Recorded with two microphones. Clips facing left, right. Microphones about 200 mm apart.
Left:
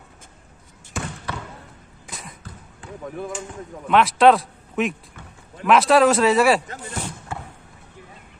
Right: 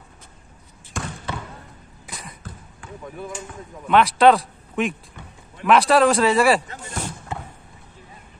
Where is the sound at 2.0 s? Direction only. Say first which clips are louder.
Even; centre (ahead or behind).